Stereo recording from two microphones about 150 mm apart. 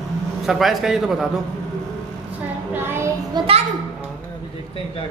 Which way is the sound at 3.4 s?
30° right (ahead or behind).